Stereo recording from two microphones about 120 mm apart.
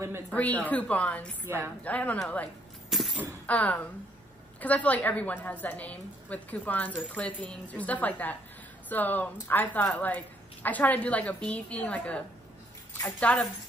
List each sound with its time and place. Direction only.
0.3 s a woman's voice: 10° left (ahead or behind)
1.4 s a woman's voice: 20° right (ahead or behind)
1.9 s a woman's voice: 10° left (ahead or behind)
2.9 s a sound: centre (ahead or behind)
3.4 s a woman's voice: 10° left (ahead or behind)